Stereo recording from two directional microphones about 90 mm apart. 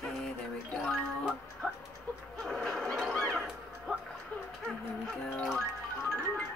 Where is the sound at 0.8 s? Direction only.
5° left (ahead or behind).